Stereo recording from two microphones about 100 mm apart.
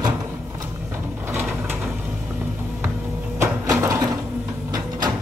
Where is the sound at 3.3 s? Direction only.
30° right (ahead or behind).